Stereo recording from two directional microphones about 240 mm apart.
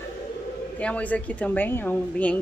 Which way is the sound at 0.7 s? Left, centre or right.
Centre.